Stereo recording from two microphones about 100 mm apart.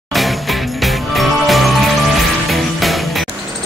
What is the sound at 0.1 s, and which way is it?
Music, centre (ahead or behind).